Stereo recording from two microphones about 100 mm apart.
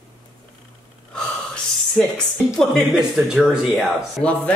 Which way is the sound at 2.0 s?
5° left (ahead or behind).